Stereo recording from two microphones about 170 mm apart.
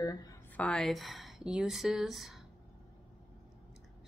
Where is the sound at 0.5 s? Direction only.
5° left (ahead or behind).